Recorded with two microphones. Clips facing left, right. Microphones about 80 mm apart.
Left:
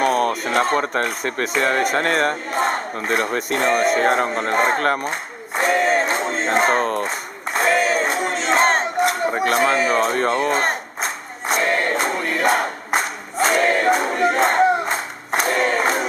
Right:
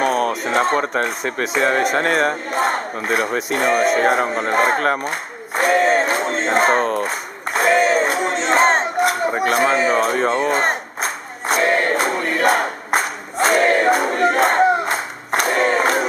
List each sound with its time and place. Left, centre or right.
0.0 s a sound: centre
0.7 s speech: centre
5.6 s crowd: centre
7.5 s battle cry: centre
9.8 s speech: centre
10.7 s crowd: centre